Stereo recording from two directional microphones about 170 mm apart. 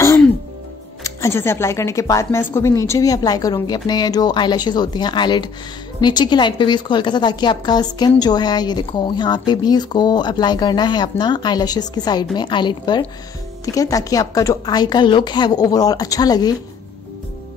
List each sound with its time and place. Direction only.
1.0 s speech: 15° left (ahead or behind)